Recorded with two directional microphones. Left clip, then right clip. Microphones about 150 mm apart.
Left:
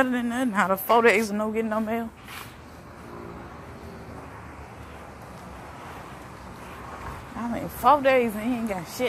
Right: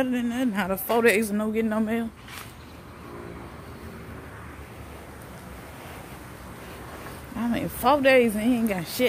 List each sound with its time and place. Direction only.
0.0 s speech: 10° right (ahead or behind); by 1.3 s 30° right (ahead or behind)
1.3 s speech: 45° right (ahead or behind)
7.5 s speech: 55° right (ahead or behind)